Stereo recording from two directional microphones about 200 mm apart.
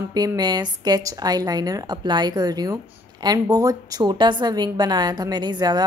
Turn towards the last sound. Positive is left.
turn(degrees=-20)  # may be behind; listen again after turning